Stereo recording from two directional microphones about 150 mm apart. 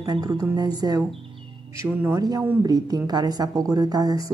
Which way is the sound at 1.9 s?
15° right (ahead or behind).